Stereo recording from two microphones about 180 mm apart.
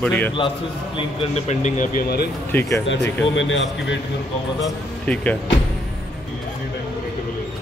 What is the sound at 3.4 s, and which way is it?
Speech, 90° left.